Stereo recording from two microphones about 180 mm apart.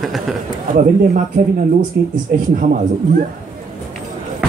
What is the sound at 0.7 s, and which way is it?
Speech, 45° right (ahead or behind).